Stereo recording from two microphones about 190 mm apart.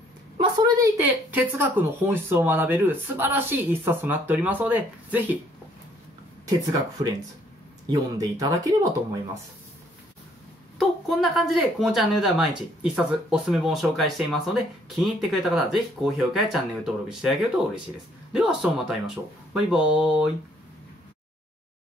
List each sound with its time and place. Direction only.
0.4 s speech: 15° right (ahead or behind)
6.4 s speech: 20° right (ahead or behind)
10.8 s speech: centre (ahead or behind)